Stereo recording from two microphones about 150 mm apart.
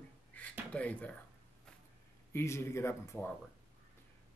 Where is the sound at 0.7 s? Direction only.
10° left (ahead or behind).